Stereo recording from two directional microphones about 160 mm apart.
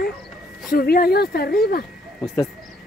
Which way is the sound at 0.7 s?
70° left (ahead or behind).